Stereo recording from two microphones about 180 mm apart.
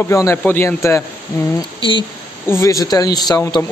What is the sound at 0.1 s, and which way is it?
Speech, 15° left (ahead or behind).